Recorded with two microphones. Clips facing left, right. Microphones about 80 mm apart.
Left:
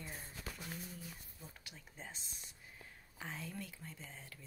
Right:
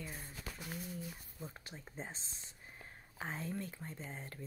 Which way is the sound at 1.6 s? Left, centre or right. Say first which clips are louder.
Right 5 dB; right.